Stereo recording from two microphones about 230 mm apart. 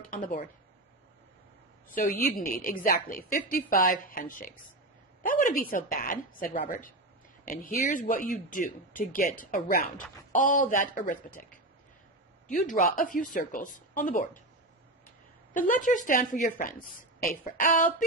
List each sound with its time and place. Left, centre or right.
0.1 s a woman's voice: left
2.0 s a woman's voice: left
15.5 s a woman's voice: left